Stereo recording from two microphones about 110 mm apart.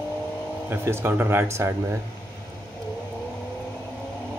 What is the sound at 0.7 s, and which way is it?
Speech, 20° right (ahead or behind).